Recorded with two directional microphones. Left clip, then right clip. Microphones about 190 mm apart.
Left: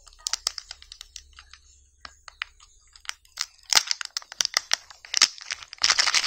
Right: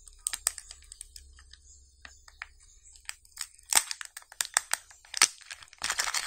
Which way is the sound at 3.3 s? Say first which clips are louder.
Left 7 dB; 10° left (ahead or behind).